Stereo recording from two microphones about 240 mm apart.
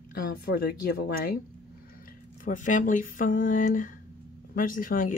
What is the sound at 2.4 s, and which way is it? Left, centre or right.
Speech, left.